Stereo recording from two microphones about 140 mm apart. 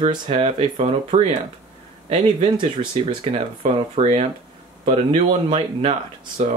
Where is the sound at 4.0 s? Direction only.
45° right (ahead or behind).